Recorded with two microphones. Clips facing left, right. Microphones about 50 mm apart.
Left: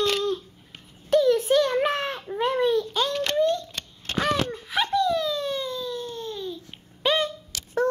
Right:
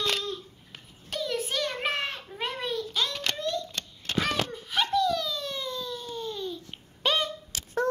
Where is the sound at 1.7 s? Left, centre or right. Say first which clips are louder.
Left 6 dB; left.